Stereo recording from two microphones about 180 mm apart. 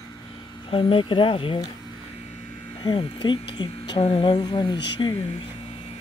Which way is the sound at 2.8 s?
30° left (ahead or behind).